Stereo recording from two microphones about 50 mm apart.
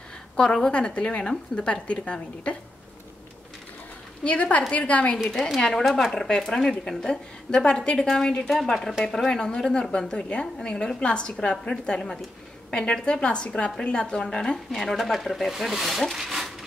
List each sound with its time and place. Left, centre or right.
0.5 s a woman's voice: centre
4.2 s a woman's voice: left
5.7 s a woman's voice: centre